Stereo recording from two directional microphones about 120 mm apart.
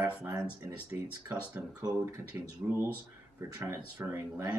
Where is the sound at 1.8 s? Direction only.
30° right (ahead or behind).